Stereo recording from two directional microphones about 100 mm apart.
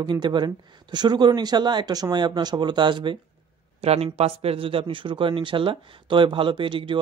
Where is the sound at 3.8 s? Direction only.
90° right; by 7.0 s 55° right (ahead or behind).